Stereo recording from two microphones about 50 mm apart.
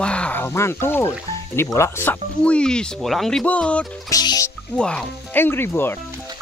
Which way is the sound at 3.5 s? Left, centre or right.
Left.